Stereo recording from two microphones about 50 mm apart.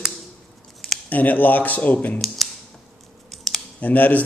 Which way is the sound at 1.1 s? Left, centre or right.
Left.